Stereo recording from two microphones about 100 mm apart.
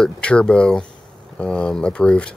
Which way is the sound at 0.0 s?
10° left (ahead or behind).